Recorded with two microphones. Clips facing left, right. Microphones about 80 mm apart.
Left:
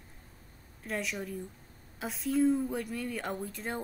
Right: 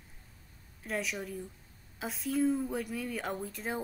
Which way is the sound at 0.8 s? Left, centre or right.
Centre.